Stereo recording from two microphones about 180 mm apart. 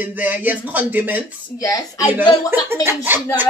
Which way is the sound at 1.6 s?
20° left (ahead or behind).